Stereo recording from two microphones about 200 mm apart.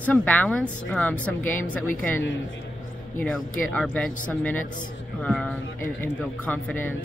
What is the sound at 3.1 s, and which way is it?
Speech, 5° left (ahead or behind).